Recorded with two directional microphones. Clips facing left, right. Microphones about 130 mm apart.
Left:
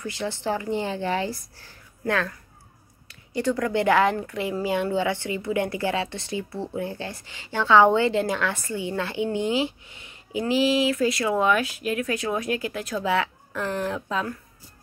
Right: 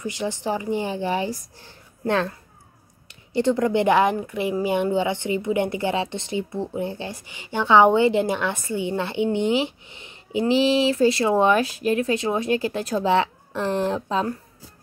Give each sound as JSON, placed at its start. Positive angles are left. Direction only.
{"t": 0.0, "sound": "a woman's voice", "side_deg": -15}